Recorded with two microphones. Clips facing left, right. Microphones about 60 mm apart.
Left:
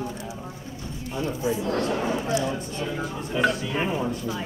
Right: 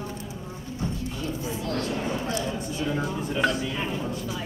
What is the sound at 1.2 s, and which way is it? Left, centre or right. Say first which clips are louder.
Speech: left 10 dB; left.